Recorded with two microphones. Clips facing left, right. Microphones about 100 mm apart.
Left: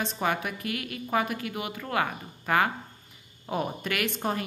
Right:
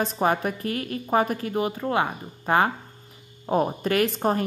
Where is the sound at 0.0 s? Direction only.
40° right (ahead or behind).